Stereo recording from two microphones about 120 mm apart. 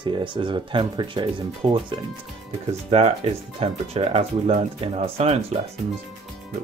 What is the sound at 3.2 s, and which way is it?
Speech, 60° right (ahead or behind).